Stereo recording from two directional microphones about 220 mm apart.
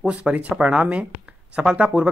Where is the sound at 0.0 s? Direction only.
5° right (ahead or behind).